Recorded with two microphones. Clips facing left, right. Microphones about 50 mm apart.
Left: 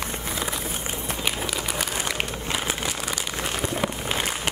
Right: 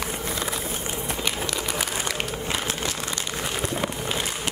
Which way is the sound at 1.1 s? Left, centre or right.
Centre.